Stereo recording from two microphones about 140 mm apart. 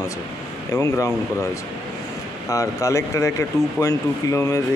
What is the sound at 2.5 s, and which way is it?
Speech, 25° left (ahead or behind).